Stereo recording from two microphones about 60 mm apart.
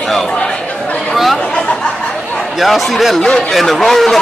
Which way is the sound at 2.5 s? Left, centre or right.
Centre.